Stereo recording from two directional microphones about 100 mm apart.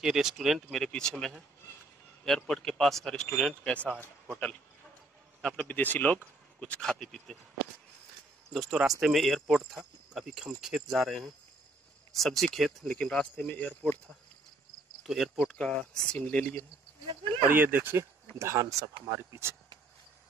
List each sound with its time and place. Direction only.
0.0 s speech: 5° right (ahead or behind); by 3.9 s 15° left (ahead or behind)
5.6 s speech: 15° left (ahead or behind)
6.8 s speech: 5° left (ahead or behind)
8.5 s speech: centre (ahead or behind); by 13.9 s 20° left (ahead or behind)
15.0 s speech: 5° right (ahead or behind)
15.5 s speech: 15° left (ahead or behind)
17.5 s speech: 20° right (ahead or behind)
18.4 s speech: 30° right (ahead or behind)